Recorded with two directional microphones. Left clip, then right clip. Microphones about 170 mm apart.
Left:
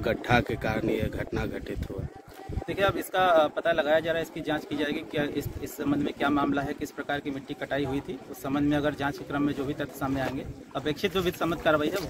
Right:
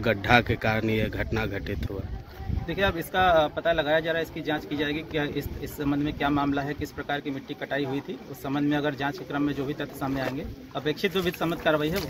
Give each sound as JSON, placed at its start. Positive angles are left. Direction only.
{"t": 0.0, "sound": "speech", "side_deg": 5}
{"t": 2.7, "sound": "speech", "side_deg": 30}